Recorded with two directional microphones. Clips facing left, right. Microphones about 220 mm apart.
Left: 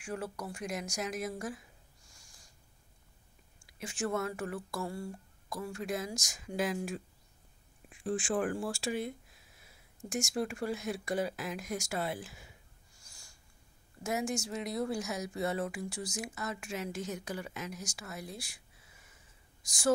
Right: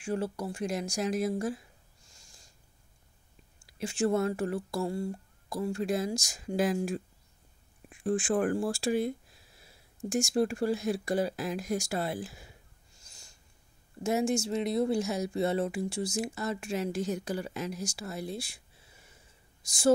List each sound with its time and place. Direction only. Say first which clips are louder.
0.0 s speech: right 7 dB; 30° right (ahead or behind)
2.0 s snort: right 4 dB; 25° right (ahead or behind)
3.8 s speech: right 7 dB; 30° right (ahead or behind)
7.9 s speech: right 5 dB; 50° right (ahead or behind)
13.0 s snort: right 3 dB; 20° right (ahead or behind)
14.0 s speech: right 6 dB; 25° right (ahead or behind)